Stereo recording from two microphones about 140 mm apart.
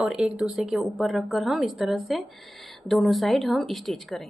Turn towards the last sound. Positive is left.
turn(degrees=0)  # may be behind; listen again after turning